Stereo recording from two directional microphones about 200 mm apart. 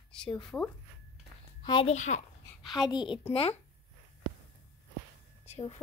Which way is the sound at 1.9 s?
35° left (ahead or behind).